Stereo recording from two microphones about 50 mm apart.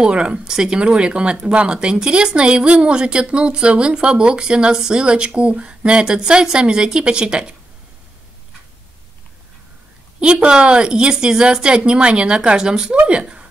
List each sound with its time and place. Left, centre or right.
0.0 s speech: right
10.2 s speech: centre